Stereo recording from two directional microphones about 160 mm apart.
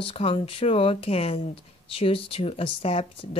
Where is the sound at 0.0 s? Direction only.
35° left (ahead or behind).